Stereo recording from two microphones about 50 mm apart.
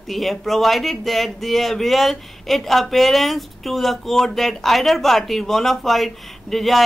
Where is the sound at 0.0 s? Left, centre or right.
Centre.